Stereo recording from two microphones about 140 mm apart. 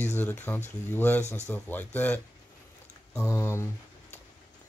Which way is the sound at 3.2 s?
20° left (ahead or behind).